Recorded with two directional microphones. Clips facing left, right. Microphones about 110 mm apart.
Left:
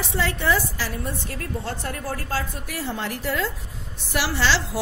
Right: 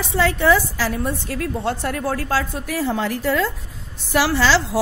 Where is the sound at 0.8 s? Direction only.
90° right.